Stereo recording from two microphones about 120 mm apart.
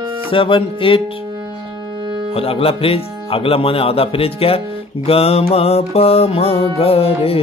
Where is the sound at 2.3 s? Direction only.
50° left (ahead or behind).